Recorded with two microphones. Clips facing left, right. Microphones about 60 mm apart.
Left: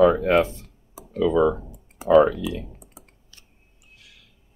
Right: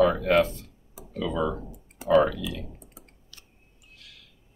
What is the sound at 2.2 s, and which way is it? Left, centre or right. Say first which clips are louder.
Speech: left 5 dB; left.